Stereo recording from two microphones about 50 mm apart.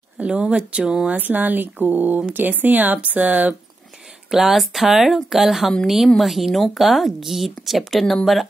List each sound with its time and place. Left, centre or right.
0.2 s speech: right
1.1 s speech: right
4.3 s speech: centre